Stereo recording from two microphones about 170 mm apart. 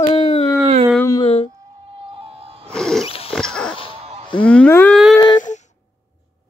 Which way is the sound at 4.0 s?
40° right (ahead or behind).